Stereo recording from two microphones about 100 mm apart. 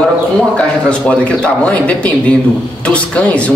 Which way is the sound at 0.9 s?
10° left (ahead or behind).